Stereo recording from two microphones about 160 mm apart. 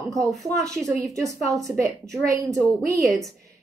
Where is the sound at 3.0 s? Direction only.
Centre (ahead or behind).